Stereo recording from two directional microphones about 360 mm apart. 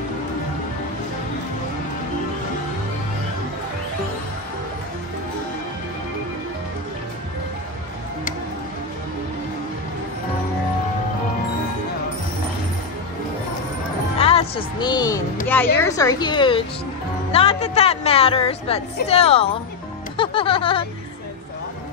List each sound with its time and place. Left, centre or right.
14.1 s music: centre
15.4 s a woman's voice: centre
20.2 s music: centre